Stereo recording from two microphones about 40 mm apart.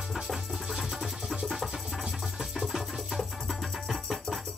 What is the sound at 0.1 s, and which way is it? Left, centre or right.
Music, centre.